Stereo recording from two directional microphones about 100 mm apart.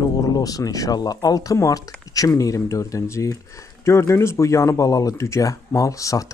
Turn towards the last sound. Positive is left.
turn(degrees=35)  # may be behind; listen again after turning